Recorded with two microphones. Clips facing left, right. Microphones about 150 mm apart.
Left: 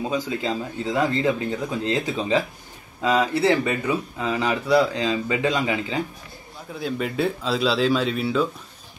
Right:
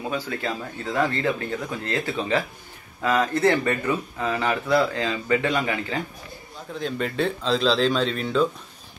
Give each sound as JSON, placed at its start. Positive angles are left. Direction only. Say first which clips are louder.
{"t": 0.1, "sound": "speech", "louder": "left 3 dB", "side_deg": 20}